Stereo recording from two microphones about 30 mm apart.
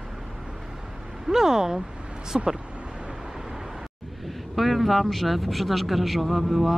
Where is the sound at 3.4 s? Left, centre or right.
Centre.